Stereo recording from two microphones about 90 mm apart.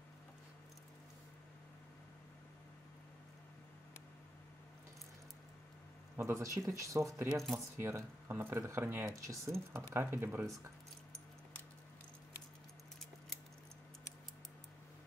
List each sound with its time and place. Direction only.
6.1 s speech: 30° right (ahead or behind)
7.3 s speech: centre (ahead or behind)
7.8 s speech: 25° right (ahead or behind)
9.9 s speech: 25° right (ahead or behind)